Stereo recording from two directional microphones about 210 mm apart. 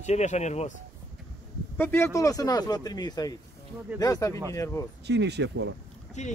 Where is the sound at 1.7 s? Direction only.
10° left (ahead or behind).